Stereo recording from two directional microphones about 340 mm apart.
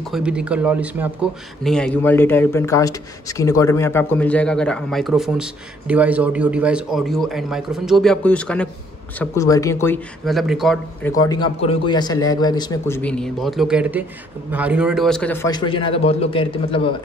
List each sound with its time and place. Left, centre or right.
0.0 s a man's voice: centre